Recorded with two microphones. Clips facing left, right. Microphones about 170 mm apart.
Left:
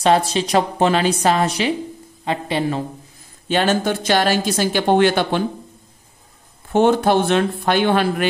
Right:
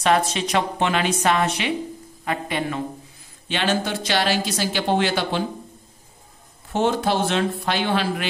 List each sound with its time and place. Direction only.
0.0 s a woman's voice: 30° left (ahead or behind)
3.4 s speech: 45° left (ahead or behind)
6.7 s speech: 55° left (ahead or behind)